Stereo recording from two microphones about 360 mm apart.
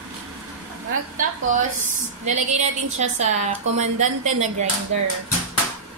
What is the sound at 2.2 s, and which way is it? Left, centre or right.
A woman's voice, centre.